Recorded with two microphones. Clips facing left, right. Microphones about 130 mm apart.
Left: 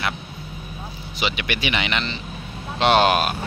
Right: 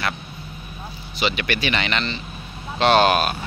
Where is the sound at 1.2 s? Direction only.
15° left (ahead or behind).